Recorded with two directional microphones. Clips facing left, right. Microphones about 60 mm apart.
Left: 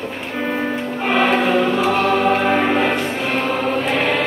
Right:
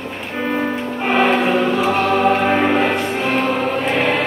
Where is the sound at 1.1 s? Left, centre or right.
Right.